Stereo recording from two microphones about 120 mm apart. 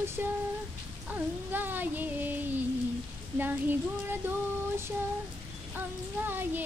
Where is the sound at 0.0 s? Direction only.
20° right (ahead or behind).